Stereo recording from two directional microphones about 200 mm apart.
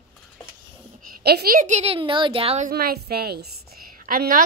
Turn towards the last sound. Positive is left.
turn(degrees=-45)  # may be behind; listen again after turning